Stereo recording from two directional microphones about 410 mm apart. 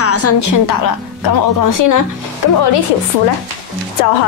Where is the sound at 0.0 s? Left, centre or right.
Left.